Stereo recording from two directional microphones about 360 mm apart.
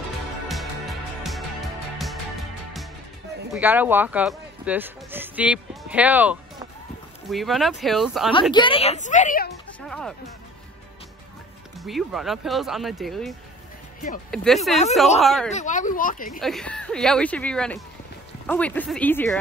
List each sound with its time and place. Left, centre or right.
0.5 s music: centre
3.5 s speech: centre
8.5 s speech: centre
9.8 s music: centre
11.8 s speech: centre
14.3 s speech: centre
15.5 s speech: left
16.3 s speech: centre